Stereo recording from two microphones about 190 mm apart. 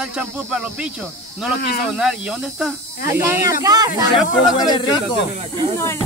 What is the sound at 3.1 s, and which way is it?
A woman's voice, 15° right (ahead or behind).